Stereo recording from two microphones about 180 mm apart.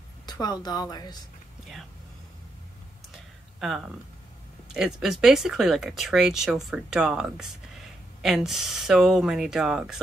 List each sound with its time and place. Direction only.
0.3 s a woman's voice: 20° left (ahead or behind)
3.5 s speech: 5° right (ahead or behind)